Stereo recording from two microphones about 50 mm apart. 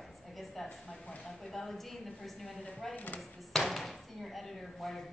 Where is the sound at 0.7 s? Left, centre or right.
Left.